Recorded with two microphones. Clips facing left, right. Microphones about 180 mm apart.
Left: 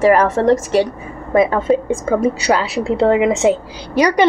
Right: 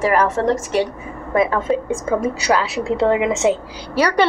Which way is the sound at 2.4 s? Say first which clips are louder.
Left 2 dB; 30° left (ahead or behind).